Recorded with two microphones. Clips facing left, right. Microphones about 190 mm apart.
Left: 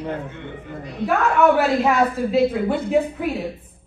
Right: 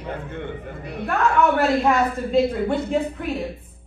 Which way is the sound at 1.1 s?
5° left (ahead or behind).